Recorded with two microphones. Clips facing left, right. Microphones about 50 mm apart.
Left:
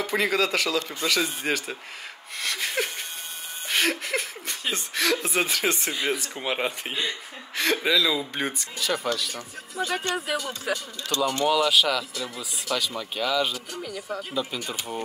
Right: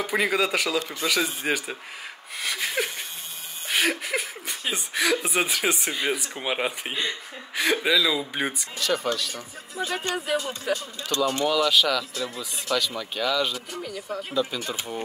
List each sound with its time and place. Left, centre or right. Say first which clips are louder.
0.0 s speech: even; centre
2.4 s a sound: right 1 dB; centre
3.6 s speech: right 1 dB; centre
8.7 s speech: right 1 dB; centre
11.1 s speech: right 1 dB; right
11.4 s speech: left 1 dB; centre
13.7 s speech: right 1 dB; centre
14.0 s speech: right 4 dB; centre